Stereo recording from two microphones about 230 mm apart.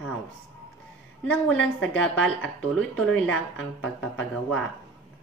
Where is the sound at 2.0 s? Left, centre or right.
Centre.